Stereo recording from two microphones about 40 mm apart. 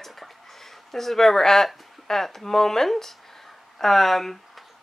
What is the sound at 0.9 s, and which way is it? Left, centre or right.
Speech, centre.